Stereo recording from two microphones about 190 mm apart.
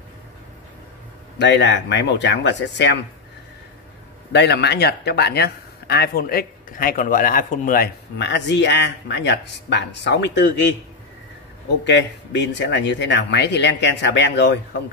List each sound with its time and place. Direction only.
1.4 s speech: 65° left (ahead or behind)
4.3 s speech: 60° left (ahead or behind)
11.8 s speech: 70° left (ahead or behind)